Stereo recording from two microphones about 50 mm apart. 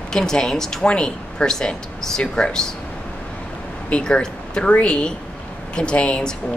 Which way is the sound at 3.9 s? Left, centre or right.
Centre.